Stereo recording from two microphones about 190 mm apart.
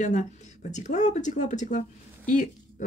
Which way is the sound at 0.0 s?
40° left (ahead or behind).